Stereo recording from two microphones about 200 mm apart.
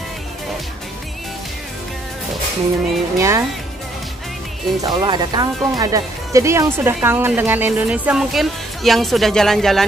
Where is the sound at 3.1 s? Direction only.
15° right (ahead or behind).